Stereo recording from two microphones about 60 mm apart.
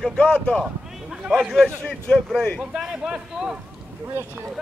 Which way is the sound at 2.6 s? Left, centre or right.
Centre.